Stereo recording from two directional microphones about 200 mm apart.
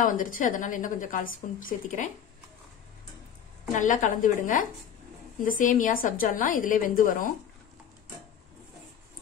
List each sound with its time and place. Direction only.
0.0 s a woman's voice: 40° left (ahead or behind)
3.7 s a woman's voice: 40° left (ahead or behind)